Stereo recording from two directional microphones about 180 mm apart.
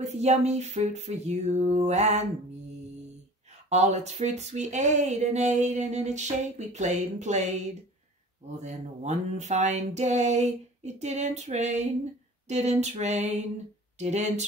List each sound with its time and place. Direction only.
0.0 s speech: 40° right (ahead or behind)
3.6 s speech: 40° right (ahead or behind)